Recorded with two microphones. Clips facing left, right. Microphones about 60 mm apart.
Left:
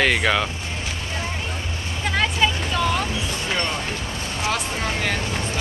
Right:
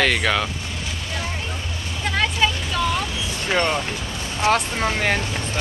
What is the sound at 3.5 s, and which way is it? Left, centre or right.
Speech, right.